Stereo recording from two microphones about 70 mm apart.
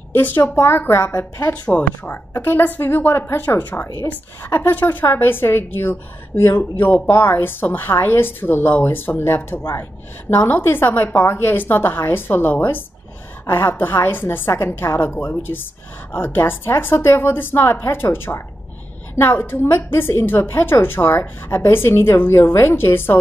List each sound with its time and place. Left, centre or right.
0.1 s a woman's voice: left
1.5 s a woman's voice: centre
2.0 s a woman's voice: left